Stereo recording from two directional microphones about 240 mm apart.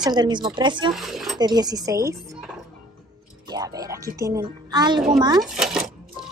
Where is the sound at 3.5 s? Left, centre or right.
Centre.